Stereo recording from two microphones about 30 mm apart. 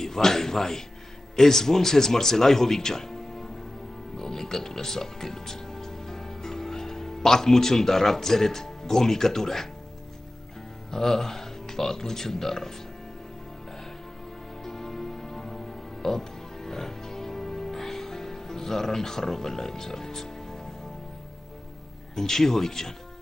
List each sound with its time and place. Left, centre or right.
0.0 s speech: centre
10.9 s speech: centre
14.6 s music: centre
22.1 s speech: centre